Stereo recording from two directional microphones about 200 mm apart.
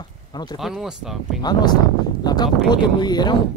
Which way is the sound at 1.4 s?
20° left (ahead or behind).